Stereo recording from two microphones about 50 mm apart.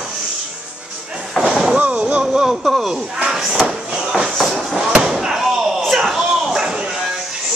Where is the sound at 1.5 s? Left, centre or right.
Centre.